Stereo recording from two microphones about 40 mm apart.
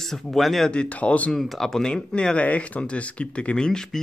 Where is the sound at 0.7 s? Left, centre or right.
Left.